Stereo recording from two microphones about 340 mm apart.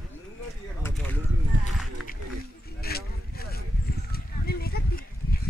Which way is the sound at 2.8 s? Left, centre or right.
Left.